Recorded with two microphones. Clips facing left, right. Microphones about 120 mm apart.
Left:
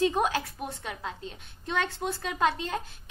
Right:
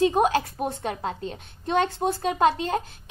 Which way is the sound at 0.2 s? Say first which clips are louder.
Right 6 dB; 45° right (ahead or behind).